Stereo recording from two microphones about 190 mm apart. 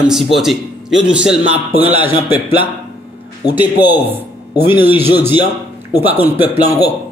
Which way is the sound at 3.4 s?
20° left (ahead or behind).